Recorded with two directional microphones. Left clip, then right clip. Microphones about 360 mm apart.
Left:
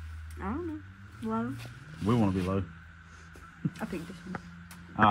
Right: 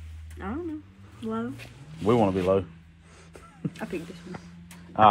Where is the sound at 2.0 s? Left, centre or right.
Right.